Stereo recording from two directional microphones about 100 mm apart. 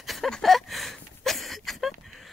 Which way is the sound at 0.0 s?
Centre (ahead or behind).